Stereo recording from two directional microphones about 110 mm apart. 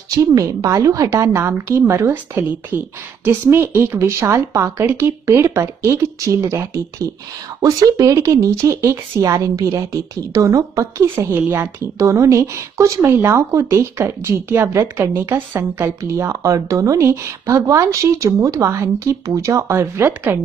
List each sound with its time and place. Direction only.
0.2 s a woman's voice: 30° right (ahead or behind)